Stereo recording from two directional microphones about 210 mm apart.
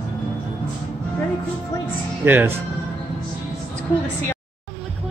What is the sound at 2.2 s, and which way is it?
Speech, 10° right (ahead or behind).